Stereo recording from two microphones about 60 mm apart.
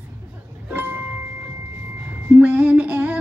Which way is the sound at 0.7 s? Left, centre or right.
Right.